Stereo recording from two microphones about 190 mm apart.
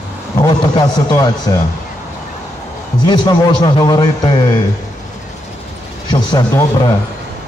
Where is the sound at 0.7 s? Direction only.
20° left (ahead or behind).